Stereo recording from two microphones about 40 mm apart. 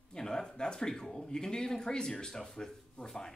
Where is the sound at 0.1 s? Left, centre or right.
Centre.